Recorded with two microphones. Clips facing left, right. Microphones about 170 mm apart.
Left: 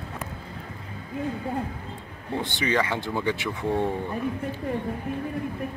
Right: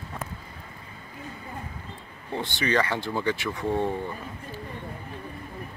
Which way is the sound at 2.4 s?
20° left (ahead or behind).